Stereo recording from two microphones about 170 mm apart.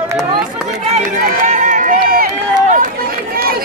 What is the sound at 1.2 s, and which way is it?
Run, 50° right (ahead or behind).